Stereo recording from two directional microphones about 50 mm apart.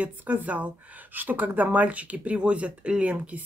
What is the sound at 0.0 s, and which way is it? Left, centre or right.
Speech, right.